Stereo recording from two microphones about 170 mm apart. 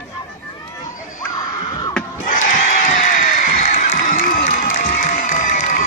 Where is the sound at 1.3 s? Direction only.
20° left (ahead or behind).